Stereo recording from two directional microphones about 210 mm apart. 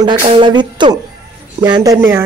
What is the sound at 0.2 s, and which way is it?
Speech, 25° right (ahead or behind).